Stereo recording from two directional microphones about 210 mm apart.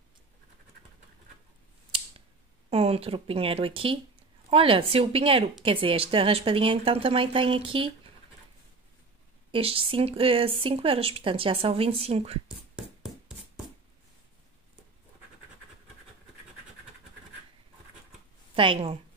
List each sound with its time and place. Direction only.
2.7 s a woman's voice: 30° right (ahead or behind)
9.5 s a woman's voice: 25° right (ahead or behind)
18.6 s a woman's voice: 25° right (ahead or behind)